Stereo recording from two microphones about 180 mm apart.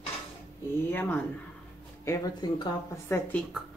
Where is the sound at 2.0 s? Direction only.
20° left (ahead or behind).